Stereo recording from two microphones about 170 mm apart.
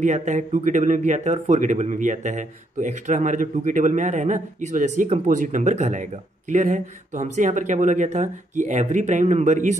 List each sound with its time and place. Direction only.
0.0 s speech: 45° right (ahead or behind)